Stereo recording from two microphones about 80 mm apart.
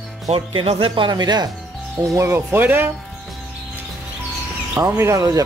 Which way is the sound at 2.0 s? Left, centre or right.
Right.